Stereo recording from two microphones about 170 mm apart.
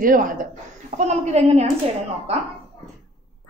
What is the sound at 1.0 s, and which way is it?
Speech, 40° right (ahead or behind).